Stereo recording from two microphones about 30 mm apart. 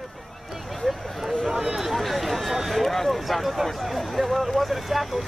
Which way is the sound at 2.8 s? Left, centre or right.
Centre.